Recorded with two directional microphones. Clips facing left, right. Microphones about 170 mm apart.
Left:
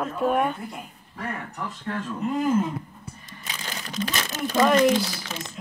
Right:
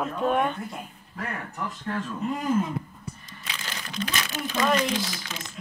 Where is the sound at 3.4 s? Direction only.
40° left (ahead or behind).